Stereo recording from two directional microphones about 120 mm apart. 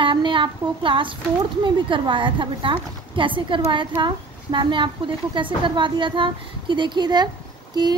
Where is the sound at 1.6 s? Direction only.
45° right (ahead or behind).